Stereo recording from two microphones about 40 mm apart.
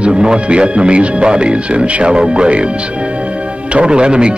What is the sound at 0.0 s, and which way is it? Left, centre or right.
Speech, right.